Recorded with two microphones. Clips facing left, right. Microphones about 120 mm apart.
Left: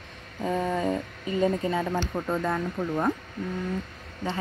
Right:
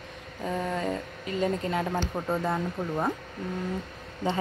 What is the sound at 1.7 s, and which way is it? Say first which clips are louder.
Speech: left 1 dB; 5° right (ahead or behind).